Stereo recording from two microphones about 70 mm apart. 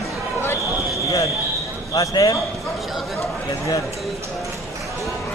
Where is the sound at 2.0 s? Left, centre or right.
Left.